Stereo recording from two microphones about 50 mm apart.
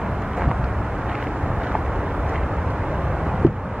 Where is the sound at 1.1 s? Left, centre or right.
Centre.